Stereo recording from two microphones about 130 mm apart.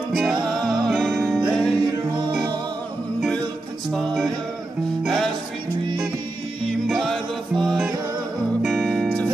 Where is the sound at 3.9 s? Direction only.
Centre (ahead or behind).